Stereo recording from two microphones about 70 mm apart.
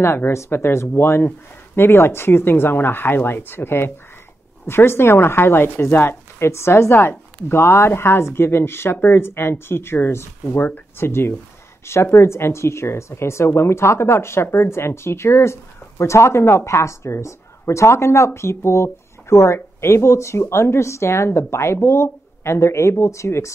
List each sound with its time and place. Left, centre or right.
0.0 s speech: left